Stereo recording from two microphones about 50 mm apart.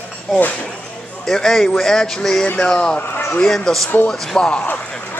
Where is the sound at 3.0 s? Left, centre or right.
Left.